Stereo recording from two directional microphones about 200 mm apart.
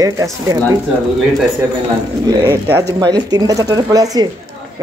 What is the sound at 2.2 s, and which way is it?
Speech, 15° right (ahead or behind).